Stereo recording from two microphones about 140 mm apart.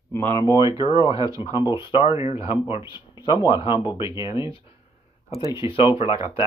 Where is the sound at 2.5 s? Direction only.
20° right (ahead or behind).